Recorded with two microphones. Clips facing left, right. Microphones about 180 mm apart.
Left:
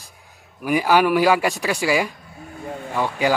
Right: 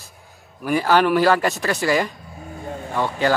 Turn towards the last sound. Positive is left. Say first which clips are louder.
# even
turn(degrees=10)  # may be behind; listen again after turning